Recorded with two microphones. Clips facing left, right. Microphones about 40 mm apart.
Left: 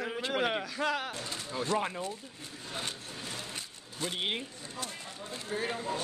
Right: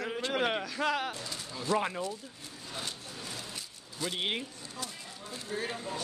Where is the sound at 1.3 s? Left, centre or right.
Left.